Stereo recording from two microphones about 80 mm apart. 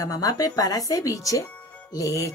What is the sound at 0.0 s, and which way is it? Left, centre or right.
Speech, left.